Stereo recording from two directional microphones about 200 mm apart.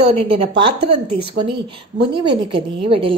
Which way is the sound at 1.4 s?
55° right (ahead or behind).